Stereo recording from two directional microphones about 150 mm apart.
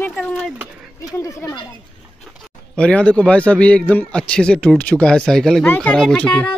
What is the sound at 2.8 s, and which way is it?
A man's voice, 10° left (ahead or behind).